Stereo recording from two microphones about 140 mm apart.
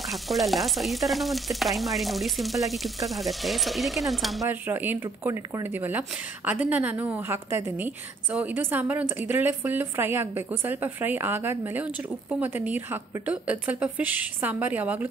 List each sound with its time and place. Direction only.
0.0 s frying: centre (ahead or behind)
4.5 s speech: 15° right (ahead or behind)